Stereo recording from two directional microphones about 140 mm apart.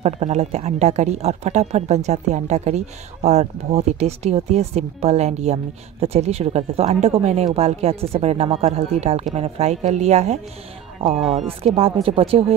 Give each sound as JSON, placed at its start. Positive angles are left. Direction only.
{"t": 0.0, "sound": "speech", "side_deg": -45}
{"t": 11.1, "sound": "speech", "side_deg": 0}
{"t": 11.4, "sound": "speech", "side_deg": -45}